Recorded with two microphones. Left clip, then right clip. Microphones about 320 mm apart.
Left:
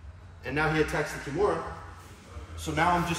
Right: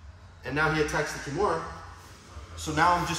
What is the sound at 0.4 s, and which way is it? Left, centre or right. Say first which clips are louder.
Speech: right 1 dB; centre.